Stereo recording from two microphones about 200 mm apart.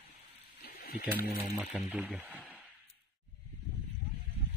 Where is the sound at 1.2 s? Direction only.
45° left (ahead or behind).